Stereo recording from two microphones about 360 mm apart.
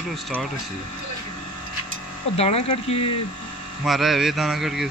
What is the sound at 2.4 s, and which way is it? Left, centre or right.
Speech, centre.